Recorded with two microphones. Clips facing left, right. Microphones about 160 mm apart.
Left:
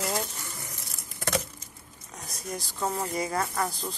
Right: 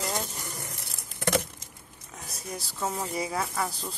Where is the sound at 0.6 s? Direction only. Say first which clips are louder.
Right 2 dB; 70° right (ahead or behind).